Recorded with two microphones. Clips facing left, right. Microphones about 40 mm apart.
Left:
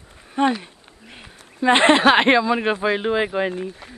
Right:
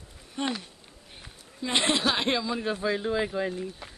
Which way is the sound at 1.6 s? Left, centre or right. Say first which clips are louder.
Left 11 dB; left.